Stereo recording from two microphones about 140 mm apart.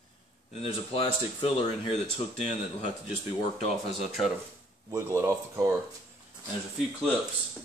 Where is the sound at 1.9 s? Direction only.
50° left (ahead or behind).